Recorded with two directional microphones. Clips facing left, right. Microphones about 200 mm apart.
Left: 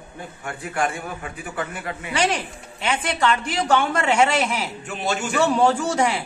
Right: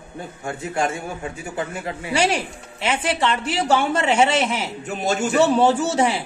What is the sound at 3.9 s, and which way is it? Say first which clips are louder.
Speech: right 1 dB; 25° right (ahead or behind).